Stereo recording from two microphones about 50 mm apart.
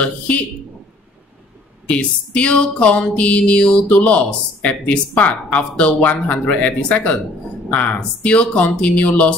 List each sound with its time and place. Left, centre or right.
1.9 s music: left